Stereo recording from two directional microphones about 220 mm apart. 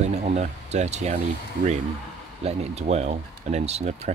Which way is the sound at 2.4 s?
30° right (ahead or behind).